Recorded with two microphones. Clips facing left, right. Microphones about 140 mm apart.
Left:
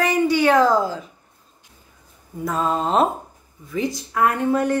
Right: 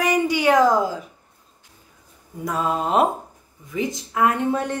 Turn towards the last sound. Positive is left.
turn(degrees=-20)  # may be behind; listen again after turning